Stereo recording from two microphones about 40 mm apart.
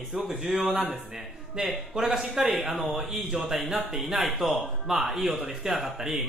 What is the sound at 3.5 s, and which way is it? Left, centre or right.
Speech, centre.